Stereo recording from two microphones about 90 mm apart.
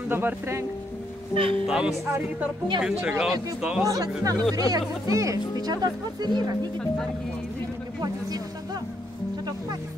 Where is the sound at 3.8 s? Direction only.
40° right (ahead or behind).